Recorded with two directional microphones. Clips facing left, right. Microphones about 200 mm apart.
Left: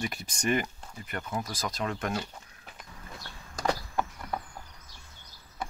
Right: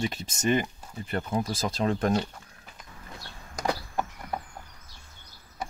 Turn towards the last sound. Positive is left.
turn(degrees=-15)  # may be behind; listen again after turning